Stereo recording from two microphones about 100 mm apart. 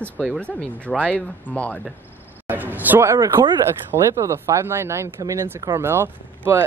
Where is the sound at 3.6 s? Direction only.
30° right (ahead or behind).